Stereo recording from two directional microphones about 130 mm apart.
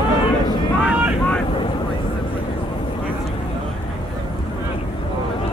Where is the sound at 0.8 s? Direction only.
10° right (ahead or behind).